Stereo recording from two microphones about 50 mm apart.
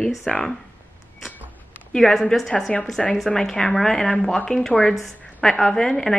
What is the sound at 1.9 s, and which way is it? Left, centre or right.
A woman's voice, centre.